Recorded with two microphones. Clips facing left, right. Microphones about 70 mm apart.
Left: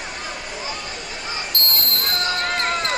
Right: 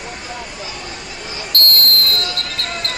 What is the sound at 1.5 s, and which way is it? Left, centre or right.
Basketball bounce, centre.